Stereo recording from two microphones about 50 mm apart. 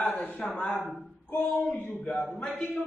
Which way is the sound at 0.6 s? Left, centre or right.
Centre.